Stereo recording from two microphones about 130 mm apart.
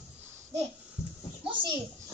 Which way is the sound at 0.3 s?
20° right (ahead or behind).